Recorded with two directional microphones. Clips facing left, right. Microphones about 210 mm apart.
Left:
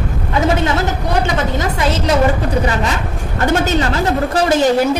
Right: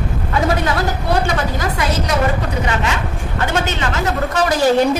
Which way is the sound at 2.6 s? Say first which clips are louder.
Left 2 dB; 35° left (ahead or behind).